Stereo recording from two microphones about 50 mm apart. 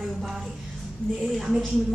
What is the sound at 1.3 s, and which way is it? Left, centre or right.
Speech, centre.